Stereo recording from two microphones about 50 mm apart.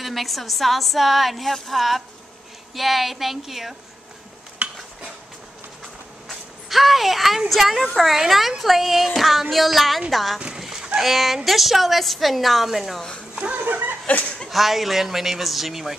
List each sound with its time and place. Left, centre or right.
0.0 s speech: centre
4.6 s dishes: right
6.2 s a woman's voice: centre
13.3 s speech: right
13.7 s laughter: right
14.5 s speech: centre